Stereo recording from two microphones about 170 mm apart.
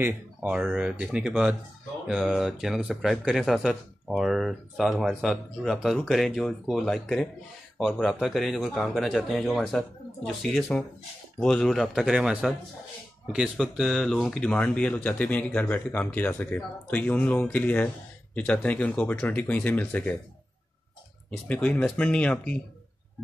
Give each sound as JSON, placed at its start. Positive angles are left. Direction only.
{"t": 0.0, "sound": "speech", "side_deg": -10}
{"t": 21.5, "sound": "speech", "side_deg": 10}